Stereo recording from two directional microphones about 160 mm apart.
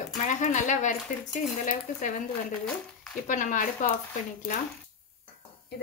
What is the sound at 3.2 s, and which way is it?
Speech, 55° left (ahead or behind).